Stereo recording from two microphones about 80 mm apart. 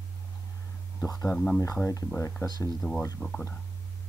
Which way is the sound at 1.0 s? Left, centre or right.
Left.